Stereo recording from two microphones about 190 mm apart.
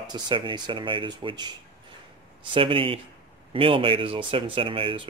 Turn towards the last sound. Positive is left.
turn(degrees=-30)  # may be behind; listen again after turning